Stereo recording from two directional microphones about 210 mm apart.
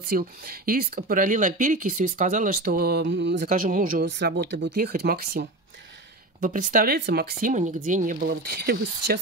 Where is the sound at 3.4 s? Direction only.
40° right (ahead or behind).